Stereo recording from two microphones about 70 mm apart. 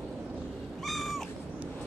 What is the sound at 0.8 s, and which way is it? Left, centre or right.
Cat, centre.